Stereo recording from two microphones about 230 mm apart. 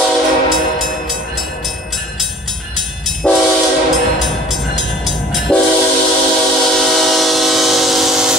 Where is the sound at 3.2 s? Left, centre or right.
Centre.